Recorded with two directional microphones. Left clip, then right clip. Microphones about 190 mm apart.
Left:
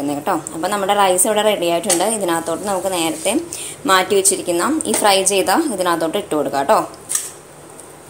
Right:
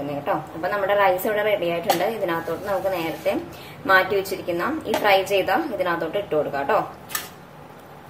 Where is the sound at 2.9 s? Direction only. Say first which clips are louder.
Left 5 dB; 35° left (ahead or behind).